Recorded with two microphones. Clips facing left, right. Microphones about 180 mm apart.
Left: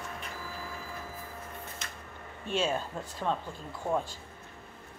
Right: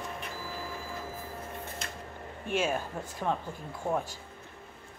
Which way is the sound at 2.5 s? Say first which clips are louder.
Even; 10° right (ahead or behind).